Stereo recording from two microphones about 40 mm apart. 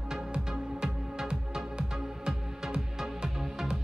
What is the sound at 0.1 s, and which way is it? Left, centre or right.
Music, centre.